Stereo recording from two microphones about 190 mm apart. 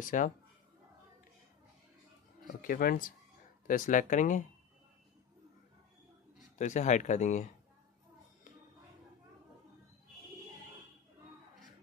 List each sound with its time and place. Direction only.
0.0 s speech: 40° left (ahead or behind)
2.6 s speech: 50° left (ahead or behind)
6.6 s speech: 40° left (ahead or behind)